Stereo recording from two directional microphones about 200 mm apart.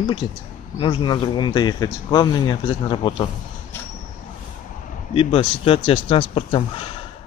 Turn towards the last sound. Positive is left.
turn(degrees=25)  # may be behind; listen again after turning